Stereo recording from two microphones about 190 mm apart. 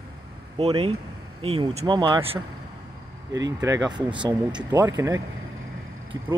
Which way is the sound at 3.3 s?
15° right (ahead or behind).